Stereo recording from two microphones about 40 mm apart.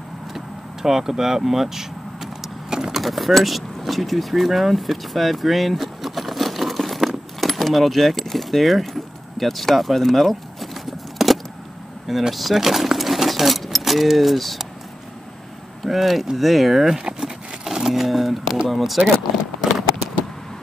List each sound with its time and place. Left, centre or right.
0.8 s vehicle: centre
3.0 s vehicle: centre
9.4 s a sound: centre
12.1 s speech: centre
15.8 s speech: centre
16.9 s a sound: centre
17.6 s speech: centre